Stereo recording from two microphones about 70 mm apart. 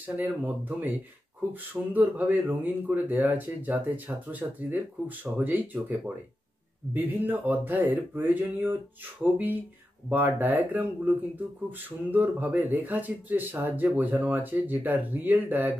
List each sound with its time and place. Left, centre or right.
0.0 s speech: right